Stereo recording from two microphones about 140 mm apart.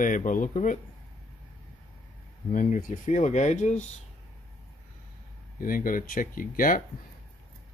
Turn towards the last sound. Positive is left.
turn(degrees=80)